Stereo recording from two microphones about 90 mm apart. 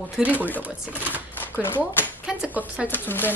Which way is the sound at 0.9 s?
20° right (ahead or behind).